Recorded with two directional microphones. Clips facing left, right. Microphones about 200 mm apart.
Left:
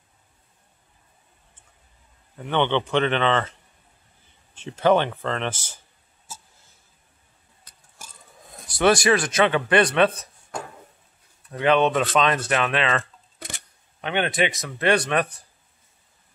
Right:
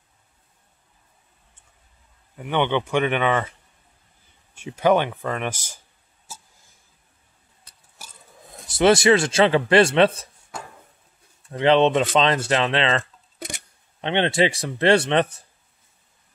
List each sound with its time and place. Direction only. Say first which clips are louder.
2.3 s a man's voice: even; 10° right (ahead or behind)
4.6 s a man's voice: even; 10° right (ahead or behind)
8.6 s speech: right 3 dB; 25° right (ahead or behind)
11.4 s speech: right 3 dB; 25° right (ahead or behind)